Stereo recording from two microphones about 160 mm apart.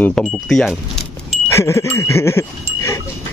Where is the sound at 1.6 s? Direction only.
15° left (ahead or behind).